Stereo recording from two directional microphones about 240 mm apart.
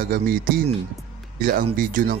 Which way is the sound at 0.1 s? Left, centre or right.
Right.